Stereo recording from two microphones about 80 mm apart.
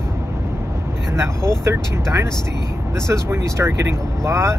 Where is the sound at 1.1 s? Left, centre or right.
Right.